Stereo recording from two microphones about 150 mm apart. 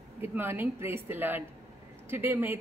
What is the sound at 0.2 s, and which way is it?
Speech, 15° right (ahead or behind).